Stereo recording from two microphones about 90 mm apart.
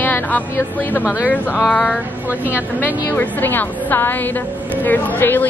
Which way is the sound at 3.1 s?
20° left (ahead or behind).